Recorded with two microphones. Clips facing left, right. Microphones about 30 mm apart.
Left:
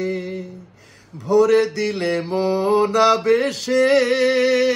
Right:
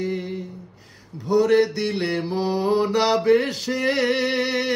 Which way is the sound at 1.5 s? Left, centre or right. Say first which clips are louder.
Left 2 dB; left.